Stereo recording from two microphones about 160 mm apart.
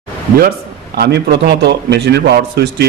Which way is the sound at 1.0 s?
85° right.